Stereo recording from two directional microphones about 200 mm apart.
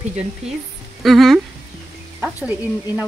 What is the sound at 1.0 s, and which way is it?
Speech, centre (ahead or behind).